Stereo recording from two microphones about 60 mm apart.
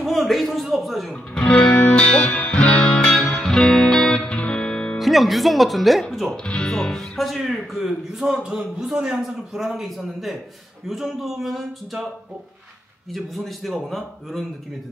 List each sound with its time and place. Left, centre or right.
0.0 s a man's voice: centre
1.3 s music: centre
4.9 s speech: centre
6.3 s speech: centre
13.1 s speech: centre